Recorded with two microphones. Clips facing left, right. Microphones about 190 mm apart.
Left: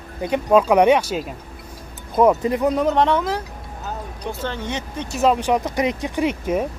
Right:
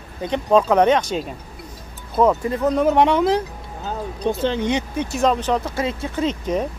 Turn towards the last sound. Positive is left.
turn(degrees=10)  # may be behind; listen again after turning